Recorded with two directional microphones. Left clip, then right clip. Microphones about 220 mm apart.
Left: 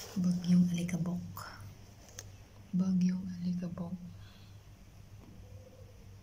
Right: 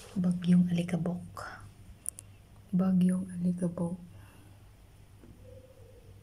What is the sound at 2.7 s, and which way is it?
Speech, 30° right (ahead or behind).